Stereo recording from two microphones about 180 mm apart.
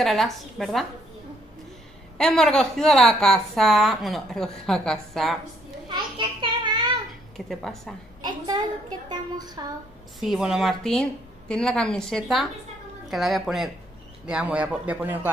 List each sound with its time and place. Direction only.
0.0 s a woman's voice: centre (ahead or behind)
2.1 s a woman's voice: 5° left (ahead or behind)
5.9 s a sound: 25° right (ahead or behind)
7.3 s a woman's voice: centre (ahead or behind)
8.2 s a sound: 20° right (ahead or behind)
10.2 s a woman's voice: centre (ahead or behind)